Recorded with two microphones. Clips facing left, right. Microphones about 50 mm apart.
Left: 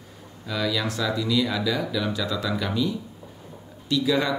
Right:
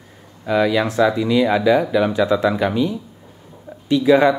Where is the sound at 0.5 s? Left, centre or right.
Right.